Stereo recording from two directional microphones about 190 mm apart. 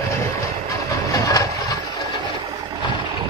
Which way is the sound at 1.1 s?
20° left (ahead or behind).